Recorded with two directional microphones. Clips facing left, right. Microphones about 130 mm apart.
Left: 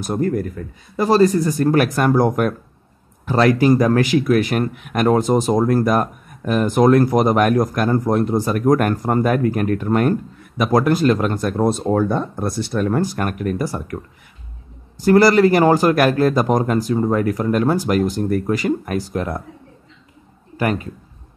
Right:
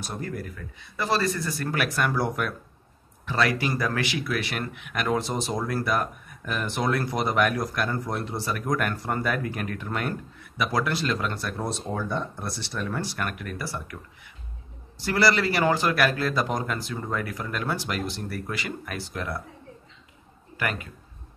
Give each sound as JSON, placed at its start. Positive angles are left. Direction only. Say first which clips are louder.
{"t": 0.0, "sound": "speech", "louder": "left 13 dB", "side_deg": 45}
{"t": 20.5, "sound": "a man's voice", "louder": "left 10 dB", "side_deg": 35}